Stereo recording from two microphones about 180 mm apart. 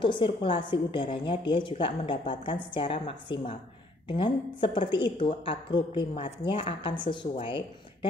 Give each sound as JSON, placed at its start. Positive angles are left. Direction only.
{"t": 0.0, "sound": "a woman's voice", "side_deg": 30}